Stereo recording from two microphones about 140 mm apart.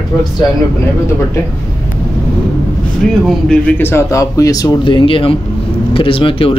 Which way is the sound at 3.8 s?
15° left (ahead or behind).